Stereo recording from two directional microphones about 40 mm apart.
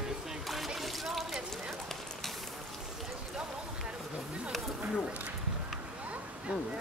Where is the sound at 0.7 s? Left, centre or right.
Centre.